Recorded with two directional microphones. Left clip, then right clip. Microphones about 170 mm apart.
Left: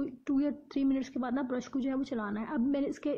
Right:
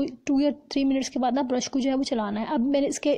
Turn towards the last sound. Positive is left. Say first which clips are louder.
# right 8 dB
turn(degrees=-30)  # may be behind; listen again after turning